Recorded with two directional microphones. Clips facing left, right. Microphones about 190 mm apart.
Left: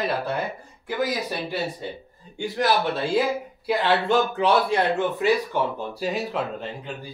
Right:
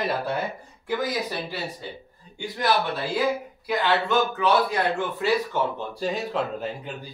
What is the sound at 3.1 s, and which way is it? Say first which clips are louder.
Speech: right 1 dB; 30° left (ahead or behind).